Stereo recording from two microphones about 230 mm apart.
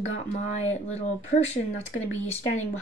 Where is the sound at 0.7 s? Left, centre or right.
Left.